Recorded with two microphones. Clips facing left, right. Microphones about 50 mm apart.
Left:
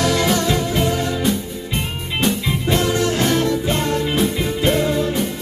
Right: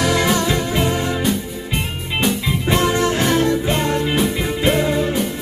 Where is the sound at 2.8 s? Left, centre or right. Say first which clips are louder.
Right 2 dB; right.